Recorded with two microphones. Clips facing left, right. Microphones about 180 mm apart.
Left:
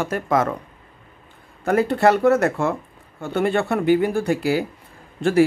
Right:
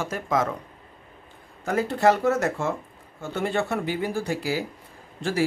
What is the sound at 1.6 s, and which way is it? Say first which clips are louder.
Speech: left 4 dB; 60° left (ahead or behind).